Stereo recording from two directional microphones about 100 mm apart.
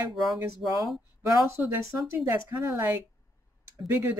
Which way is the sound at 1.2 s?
30° right (ahead or behind).